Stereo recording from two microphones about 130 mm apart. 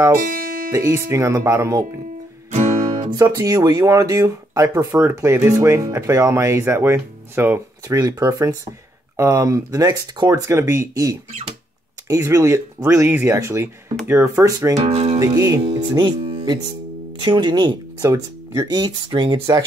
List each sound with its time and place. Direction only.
0.7 s speech: 25° right (ahead or behind)
2.5 s guitar: 70° right (ahead or behind)
3.2 s speech: 30° right (ahead or behind)
14.8 s speech: 55° right (ahead or behind)
15.1 s speech: 25° right (ahead or behind)